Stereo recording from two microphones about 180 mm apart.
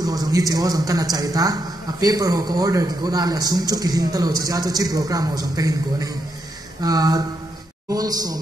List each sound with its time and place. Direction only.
0.0 s a man's voice: 20° right (ahead or behind)